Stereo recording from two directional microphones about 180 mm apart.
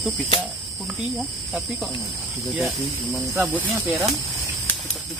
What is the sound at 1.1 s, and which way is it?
Cricket, centre (ahead or behind).